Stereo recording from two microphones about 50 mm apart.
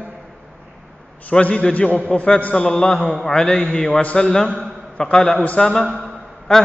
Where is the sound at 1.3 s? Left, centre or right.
Left.